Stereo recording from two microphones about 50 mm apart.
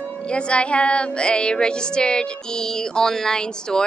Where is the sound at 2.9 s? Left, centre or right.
Centre.